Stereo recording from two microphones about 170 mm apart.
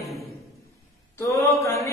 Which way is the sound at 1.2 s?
15° left (ahead or behind).